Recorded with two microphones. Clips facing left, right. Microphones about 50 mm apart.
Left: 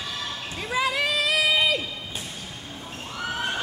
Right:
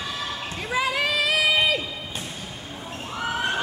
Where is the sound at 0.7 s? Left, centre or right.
Right.